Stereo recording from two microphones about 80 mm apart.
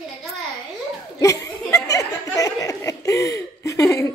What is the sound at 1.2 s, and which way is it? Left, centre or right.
Chuckle, left.